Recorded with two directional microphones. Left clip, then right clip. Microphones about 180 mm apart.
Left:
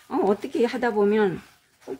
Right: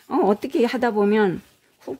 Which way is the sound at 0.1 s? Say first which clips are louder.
Right 3 dB; 50° right (ahead or behind).